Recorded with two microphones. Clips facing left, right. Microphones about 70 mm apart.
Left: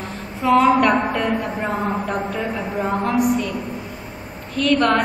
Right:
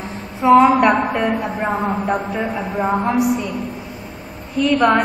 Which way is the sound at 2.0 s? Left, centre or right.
Right.